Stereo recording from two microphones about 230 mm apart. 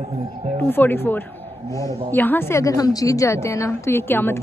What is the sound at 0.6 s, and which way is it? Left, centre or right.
Speech, centre.